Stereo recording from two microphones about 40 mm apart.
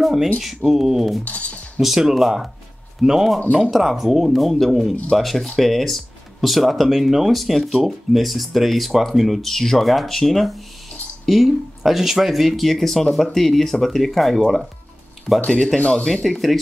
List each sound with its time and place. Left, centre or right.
0.0 s speech: centre
1.2 s speech: left
1.8 s speech: centre
9.4 s speech: centre
15.4 s speech: left
16.3 s speech: centre